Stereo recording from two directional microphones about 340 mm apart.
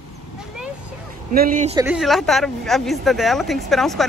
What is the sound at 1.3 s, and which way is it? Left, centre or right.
Speech, right.